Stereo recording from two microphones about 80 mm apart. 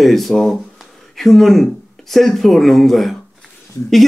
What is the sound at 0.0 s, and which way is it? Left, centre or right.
Speech, centre.